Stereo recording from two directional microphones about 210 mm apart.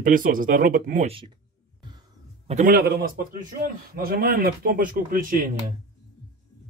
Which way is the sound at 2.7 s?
45° right (ahead or behind).